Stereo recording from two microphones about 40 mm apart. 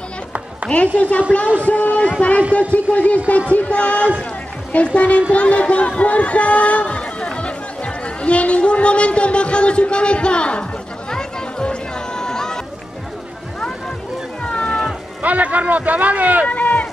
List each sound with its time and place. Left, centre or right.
0.7 s speech: left
11.1 s music: left
14.5 s music: left
15.2 s speech: right
16.4 s rowboat: left